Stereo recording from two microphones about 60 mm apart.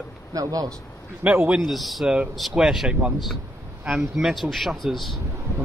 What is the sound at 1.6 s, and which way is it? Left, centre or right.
Speech, centre.